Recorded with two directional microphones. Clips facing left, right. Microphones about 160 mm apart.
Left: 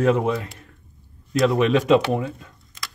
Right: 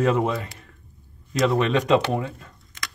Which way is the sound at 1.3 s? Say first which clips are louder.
Left 3 dB; centre (ahead or behind).